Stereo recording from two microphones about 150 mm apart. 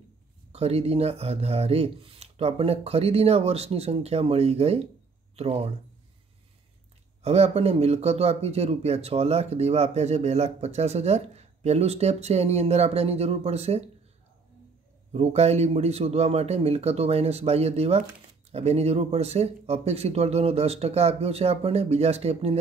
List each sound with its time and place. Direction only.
0.5 s speech: 45° right (ahead or behind)
7.2 s speech: 45° right (ahead or behind)
15.1 s speech: 45° right (ahead or behind)